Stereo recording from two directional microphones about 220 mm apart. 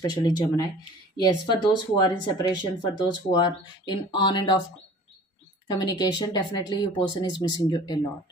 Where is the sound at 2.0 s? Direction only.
20° left (ahead or behind).